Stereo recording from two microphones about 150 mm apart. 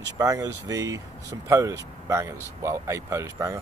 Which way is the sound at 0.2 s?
25° right (ahead or behind).